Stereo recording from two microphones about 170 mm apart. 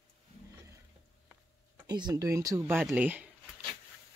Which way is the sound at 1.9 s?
25° right (ahead or behind).